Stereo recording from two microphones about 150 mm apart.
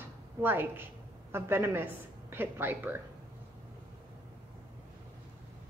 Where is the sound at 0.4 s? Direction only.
15° right (ahead or behind).